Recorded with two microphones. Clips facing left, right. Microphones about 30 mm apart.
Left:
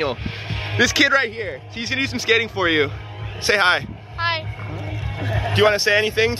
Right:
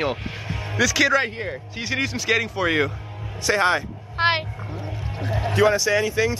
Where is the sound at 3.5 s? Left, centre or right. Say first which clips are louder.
Left 3 dB; left.